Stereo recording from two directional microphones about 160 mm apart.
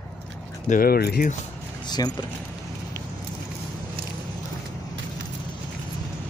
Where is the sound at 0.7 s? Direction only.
65° left (ahead or behind).